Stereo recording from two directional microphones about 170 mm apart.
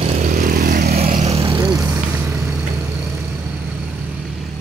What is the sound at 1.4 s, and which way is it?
Vehicle, 20° right (ahead or behind).